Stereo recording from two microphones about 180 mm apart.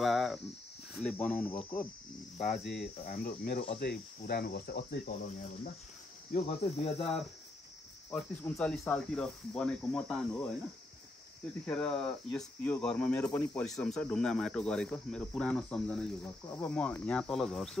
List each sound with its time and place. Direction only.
0.0 s speech: centre (ahead or behind)
2.3 s speech: 45° left (ahead or behind)
3.8 s cricket: 60° left (ahead or behind)
5.1 s cricket: 40° left (ahead or behind)
7.0 s speech: centre (ahead or behind)
11.6 s speech: 5° left (ahead or behind)